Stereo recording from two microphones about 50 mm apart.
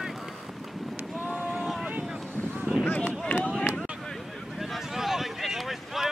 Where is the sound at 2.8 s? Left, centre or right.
Left.